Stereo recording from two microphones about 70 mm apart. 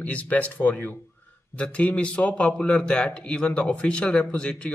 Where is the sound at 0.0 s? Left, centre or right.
Centre.